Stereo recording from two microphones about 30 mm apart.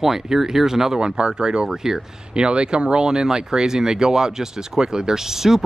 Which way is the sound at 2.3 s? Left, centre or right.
Right.